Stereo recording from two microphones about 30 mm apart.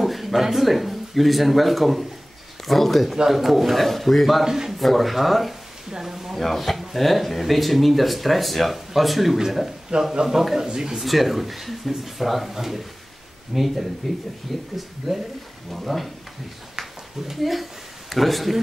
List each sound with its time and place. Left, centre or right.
0.0 s speech: centre
5.9 s speech: centre
6.3 s a man's voice: centre; by 11.0 s right
11.0 s a man's voice: centre
17.4 s speech: centre